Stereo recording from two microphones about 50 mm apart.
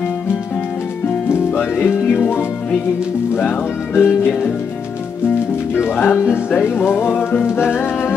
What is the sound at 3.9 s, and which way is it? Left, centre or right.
Music, left.